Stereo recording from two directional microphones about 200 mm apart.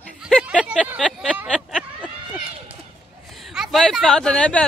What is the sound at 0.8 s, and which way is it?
Speech, 5° right (ahead or behind).